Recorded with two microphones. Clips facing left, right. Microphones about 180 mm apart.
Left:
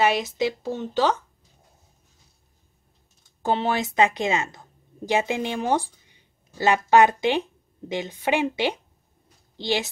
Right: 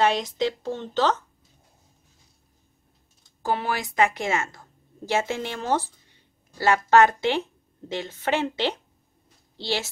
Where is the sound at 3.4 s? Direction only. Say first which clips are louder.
Left 3 dB; 25° left (ahead or behind).